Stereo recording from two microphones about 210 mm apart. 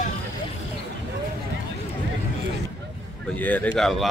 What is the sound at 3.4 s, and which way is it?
Speech, 10° left (ahead or behind).